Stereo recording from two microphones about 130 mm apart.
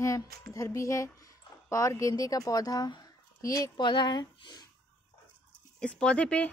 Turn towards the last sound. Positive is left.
turn(degrees=10)  # may be behind; listen again after turning